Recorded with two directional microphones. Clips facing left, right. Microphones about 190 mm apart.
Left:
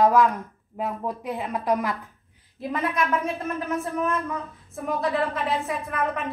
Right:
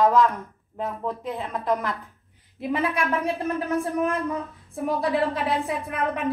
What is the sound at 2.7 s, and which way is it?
Speech, 30° right (ahead or behind).